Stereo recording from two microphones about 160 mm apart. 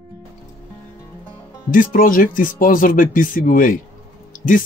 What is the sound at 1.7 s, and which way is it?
Speech, 60° left (ahead or behind).